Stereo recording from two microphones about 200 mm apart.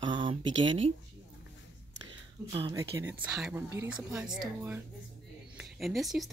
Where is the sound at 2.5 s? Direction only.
25° right (ahead or behind).